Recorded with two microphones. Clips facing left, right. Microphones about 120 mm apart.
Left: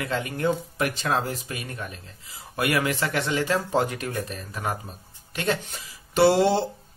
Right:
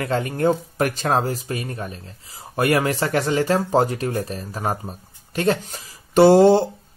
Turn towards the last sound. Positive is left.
turn(degrees=-45)  # may be behind; listen again after turning